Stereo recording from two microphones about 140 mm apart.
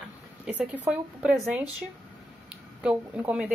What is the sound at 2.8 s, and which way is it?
Speech, 10° right (ahead or behind).